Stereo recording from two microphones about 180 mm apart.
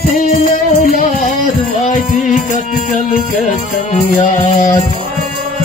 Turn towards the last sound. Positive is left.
turn(degrees=45)  # may be behind; listen again after turning